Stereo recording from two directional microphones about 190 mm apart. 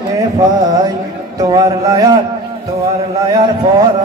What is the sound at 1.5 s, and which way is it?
Music, 20° right (ahead or behind).